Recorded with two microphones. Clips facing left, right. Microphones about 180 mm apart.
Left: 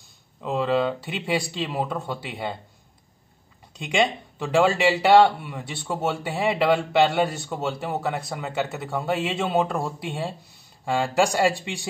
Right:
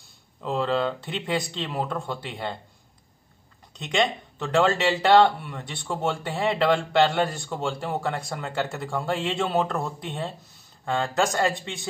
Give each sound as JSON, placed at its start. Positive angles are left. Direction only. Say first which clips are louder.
{"t": 0.4, "sound": "speech", "louder": "left 2 dB", "side_deg": 5}
{"t": 3.7, "sound": "speech", "louder": "left 2 dB", "side_deg": 10}